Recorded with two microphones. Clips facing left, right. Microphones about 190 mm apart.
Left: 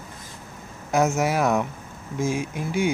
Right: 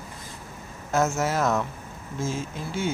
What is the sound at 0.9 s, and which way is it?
Speech, 15° left (ahead or behind).